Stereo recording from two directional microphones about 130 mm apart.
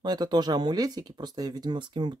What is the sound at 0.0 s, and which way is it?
Speech, 30° right (ahead or behind).